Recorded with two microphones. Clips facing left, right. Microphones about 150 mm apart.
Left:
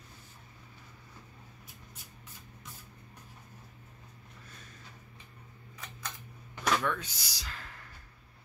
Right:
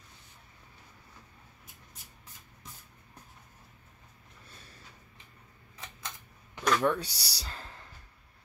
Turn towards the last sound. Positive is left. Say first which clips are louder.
# right 2 dB
turn(degrees=-30)  # may be behind; listen again after turning